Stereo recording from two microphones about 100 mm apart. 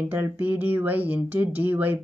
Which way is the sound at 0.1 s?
20° right (ahead or behind).